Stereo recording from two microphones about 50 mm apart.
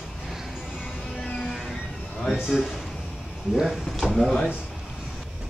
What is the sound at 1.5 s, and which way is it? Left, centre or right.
Music, centre.